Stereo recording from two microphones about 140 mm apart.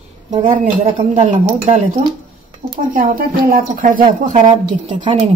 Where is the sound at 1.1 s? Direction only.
60° right (ahead or behind).